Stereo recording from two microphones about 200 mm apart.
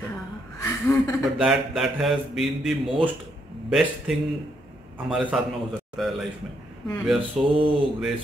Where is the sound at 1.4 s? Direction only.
Centre (ahead or behind).